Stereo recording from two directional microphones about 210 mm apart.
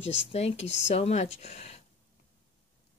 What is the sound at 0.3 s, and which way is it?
A woman's voice, 30° left (ahead or behind).